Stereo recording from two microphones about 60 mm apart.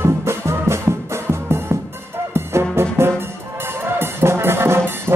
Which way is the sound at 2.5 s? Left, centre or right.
Right.